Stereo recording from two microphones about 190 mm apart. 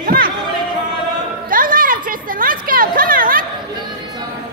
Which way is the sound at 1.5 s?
45° right (ahead or behind).